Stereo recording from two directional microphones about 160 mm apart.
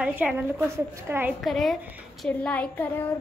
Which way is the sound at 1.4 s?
Centre (ahead or behind).